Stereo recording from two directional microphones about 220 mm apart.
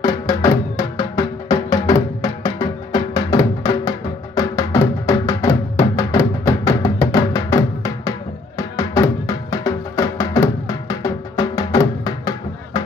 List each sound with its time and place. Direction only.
0.0 s music: 15° left (ahead or behind)